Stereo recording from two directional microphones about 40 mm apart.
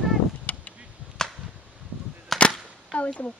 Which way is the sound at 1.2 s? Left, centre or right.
Centre.